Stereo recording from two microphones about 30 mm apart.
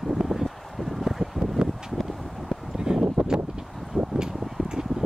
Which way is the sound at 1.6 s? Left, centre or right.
Right.